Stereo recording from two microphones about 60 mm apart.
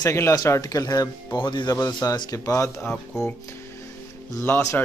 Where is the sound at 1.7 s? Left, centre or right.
Left.